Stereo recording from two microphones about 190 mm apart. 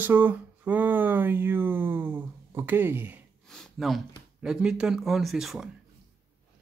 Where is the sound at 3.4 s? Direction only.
Centre (ahead or behind).